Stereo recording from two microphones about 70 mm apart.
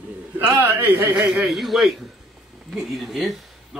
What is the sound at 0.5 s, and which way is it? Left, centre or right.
Speech, right.